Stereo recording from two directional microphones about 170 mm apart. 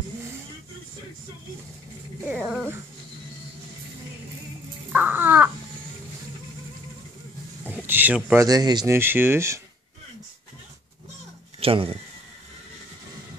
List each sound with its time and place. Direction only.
2.3 s speech: 5° right (ahead or behind)
4.9 s crow: 10° right (ahead or behind)
7.6 s a sound: 10° right (ahead or behind)
8.5 s speech: 25° right (ahead or behind)
11.6 s speech: 35° right (ahead or behind)